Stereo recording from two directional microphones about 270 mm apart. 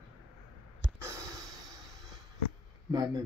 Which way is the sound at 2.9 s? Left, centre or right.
Centre.